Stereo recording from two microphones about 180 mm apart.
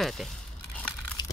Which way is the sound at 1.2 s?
25° left (ahead or behind).